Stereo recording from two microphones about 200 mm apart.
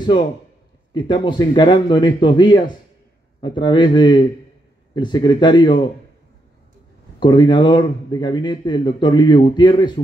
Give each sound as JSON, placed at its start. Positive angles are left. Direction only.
{"t": 0.9, "sound": "speech", "side_deg": 25}
{"t": 7.2, "sound": "speech", "side_deg": 20}